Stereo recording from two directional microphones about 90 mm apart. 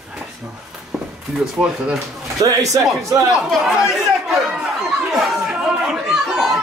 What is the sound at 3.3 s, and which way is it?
Chatter, 5° right (ahead or behind).